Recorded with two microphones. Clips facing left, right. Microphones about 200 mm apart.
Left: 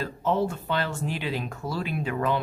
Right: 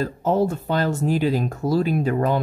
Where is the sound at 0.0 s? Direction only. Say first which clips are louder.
Right 5 dB; 40° right (ahead or behind).